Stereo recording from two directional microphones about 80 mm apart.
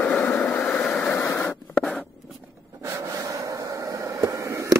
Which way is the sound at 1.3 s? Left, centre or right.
Centre.